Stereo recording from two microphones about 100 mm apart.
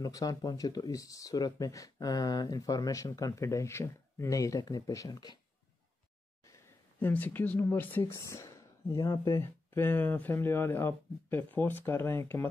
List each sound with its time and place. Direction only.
0.0 s speech: 35° left (ahead or behind)
7.0 s speech: 20° left (ahead or behind)